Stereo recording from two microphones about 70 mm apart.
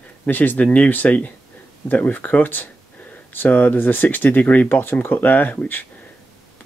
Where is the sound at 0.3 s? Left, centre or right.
Left.